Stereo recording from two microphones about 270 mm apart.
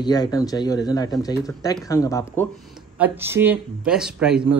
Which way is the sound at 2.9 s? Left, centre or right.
Centre.